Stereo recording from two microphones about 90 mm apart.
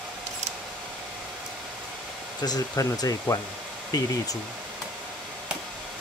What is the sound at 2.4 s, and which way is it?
Speech, 45° left (ahead or behind).